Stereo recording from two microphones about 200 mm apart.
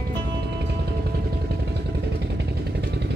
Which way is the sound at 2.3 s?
55° right (ahead or behind).